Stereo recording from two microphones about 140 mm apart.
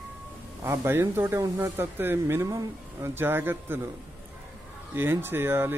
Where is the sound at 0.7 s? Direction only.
15° right (ahead or behind).